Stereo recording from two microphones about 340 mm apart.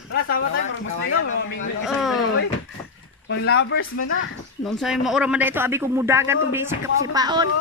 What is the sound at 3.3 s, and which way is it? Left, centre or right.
Speech, left.